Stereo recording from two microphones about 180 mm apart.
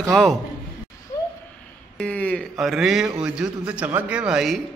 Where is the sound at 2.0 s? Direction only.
5° left (ahead or behind).